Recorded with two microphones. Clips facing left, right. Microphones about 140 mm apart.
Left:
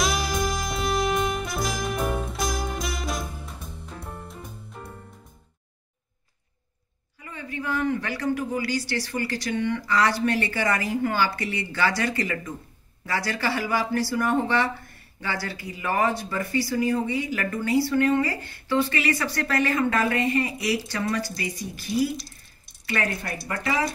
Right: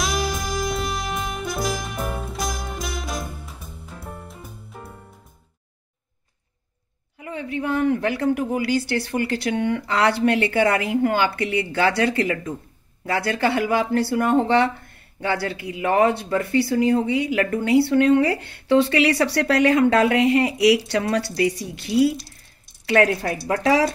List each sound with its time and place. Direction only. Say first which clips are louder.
0.0 s music: even; centre (ahead or behind)
7.2 s speech: right 7 dB; 70° right (ahead or behind); by 23.9 s 90° right